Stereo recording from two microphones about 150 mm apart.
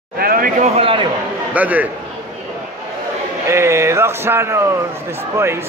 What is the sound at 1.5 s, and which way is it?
Speech, 10° right (ahead or behind).